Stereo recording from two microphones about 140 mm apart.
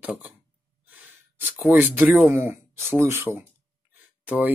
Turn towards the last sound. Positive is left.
turn(degrees=-10)  # may be behind; listen again after turning